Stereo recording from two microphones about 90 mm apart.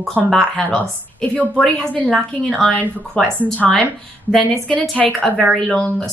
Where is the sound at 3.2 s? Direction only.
10° left (ahead or behind).